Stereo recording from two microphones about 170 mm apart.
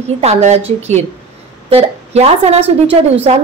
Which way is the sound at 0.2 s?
40° right (ahead or behind).